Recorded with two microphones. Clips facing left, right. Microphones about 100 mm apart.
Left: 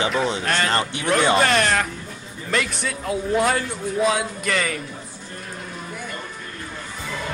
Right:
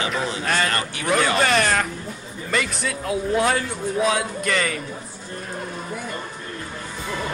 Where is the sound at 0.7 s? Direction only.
25° left (ahead or behind).